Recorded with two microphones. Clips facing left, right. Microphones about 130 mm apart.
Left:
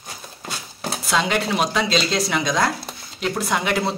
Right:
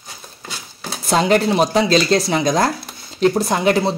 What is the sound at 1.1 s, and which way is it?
A woman's voice, 45° right (ahead or behind).